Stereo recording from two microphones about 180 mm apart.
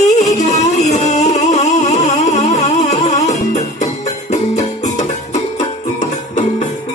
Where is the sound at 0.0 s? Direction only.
40° left (ahead or behind).